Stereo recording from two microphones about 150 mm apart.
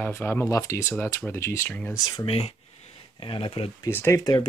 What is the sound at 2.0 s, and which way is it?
Speech, 35° left (ahead or behind).